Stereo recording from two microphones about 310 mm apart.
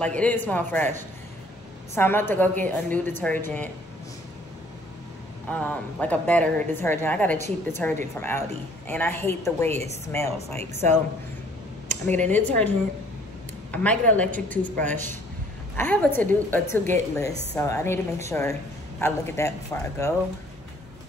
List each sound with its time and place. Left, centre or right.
0.0 s speech: centre
2.0 s speech: centre
5.5 s speech: centre
10.6 s speech: right
12.2 s speech: centre